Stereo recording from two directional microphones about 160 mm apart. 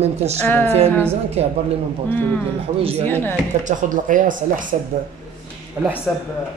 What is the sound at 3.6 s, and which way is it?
Speech, 55° right (ahead or behind).